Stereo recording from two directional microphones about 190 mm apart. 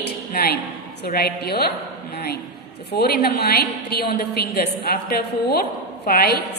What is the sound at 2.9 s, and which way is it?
A woman's voice, 55° left (ahead or behind).